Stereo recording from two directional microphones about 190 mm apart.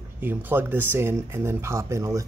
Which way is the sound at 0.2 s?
10° right (ahead or behind).